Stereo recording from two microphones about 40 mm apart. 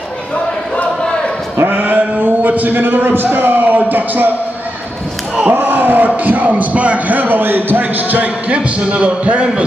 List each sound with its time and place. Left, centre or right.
1.6 s sheep: right
2.4 s a man's voice: right
5.5 s a sound: right
6.5 s a man's voice: right
7.1 s a man's voice: right
7.8 s a man's voice: right